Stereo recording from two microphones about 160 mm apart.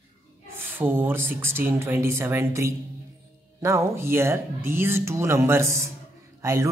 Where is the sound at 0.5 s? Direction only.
15° right (ahead or behind).